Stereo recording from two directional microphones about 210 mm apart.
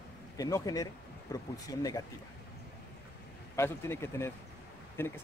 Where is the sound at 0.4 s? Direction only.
15° left (ahead or behind).